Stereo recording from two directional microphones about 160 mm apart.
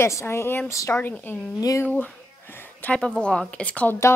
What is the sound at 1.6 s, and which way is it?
Speech, 20° left (ahead or behind).